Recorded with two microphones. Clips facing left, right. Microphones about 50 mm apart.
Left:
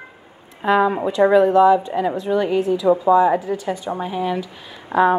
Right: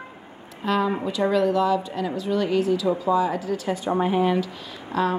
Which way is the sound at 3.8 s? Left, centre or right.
Centre.